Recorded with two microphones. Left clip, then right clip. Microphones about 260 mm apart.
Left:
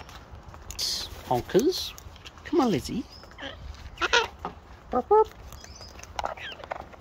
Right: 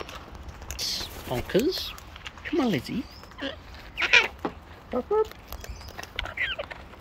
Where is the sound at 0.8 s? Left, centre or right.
Centre.